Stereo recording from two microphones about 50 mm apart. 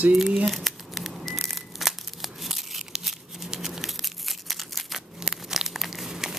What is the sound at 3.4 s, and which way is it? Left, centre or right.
Crumpling, centre.